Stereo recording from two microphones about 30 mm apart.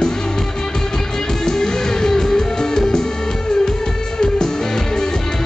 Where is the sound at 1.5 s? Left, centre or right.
Centre.